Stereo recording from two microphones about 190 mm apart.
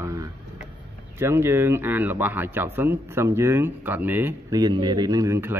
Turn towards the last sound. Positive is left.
turn(degrees=-15)  # may be behind; listen again after turning